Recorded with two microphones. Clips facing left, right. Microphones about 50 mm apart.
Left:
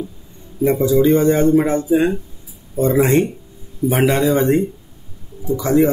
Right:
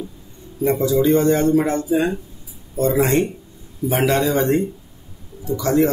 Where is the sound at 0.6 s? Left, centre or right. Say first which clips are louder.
Left 3 dB; centre.